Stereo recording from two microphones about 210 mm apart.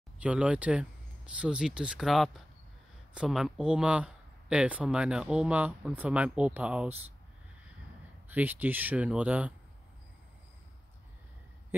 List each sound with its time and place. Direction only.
0.2 s speech: 5° right (ahead or behind)
8.3 s speech: 10° right (ahead or behind)